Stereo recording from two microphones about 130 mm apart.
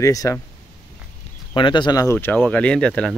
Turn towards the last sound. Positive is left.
turn(degrees=5)  # may be behind; listen again after turning